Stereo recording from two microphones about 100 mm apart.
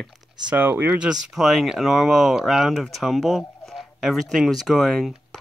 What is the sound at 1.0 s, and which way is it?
Speech, 5° right (ahead or behind).